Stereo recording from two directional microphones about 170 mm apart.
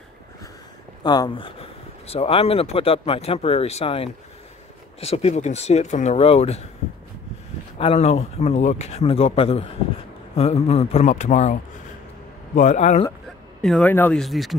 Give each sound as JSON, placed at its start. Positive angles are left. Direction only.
{"t": 1.0, "sound": "speech", "side_deg": 25}
{"t": 7.8, "sound": "speech", "side_deg": 40}
{"t": 13.6, "sound": "speech", "side_deg": 5}
{"t": 14.2, "sound": "speech", "side_deg": 0}